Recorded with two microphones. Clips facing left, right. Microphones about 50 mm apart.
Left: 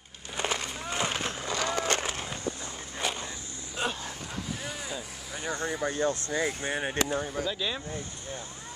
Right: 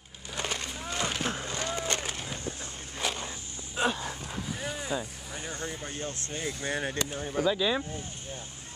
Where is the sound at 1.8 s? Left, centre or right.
Left.